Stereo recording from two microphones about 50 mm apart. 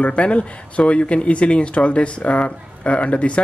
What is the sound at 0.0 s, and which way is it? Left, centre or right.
Speech, left.